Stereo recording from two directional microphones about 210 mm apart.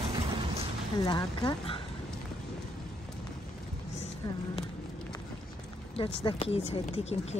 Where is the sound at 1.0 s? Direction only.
20° left (ahead or behind).